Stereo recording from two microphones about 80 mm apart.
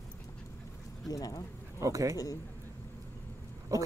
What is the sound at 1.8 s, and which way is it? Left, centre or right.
Speech, right.